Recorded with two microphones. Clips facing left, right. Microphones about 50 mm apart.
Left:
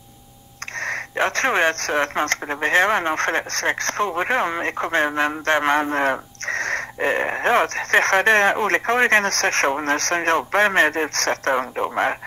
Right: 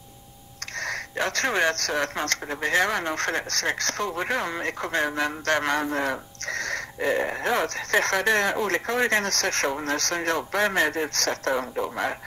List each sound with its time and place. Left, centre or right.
0.7 s speech: left